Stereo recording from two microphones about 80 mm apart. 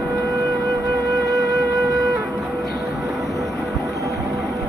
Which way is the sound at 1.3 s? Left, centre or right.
Right.